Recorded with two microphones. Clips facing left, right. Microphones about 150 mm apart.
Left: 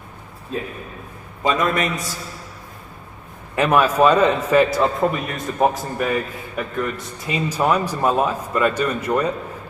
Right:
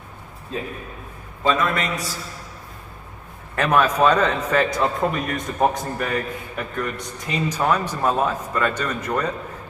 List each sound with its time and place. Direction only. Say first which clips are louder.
1.4 s a man's voice: left 1 dB; 15° left (ahead or behind)
3.5 s a man's voice: left 2 dB; 10° left (ahead or behind)